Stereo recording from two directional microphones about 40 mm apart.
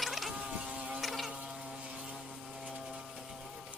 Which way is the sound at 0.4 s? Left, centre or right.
Right.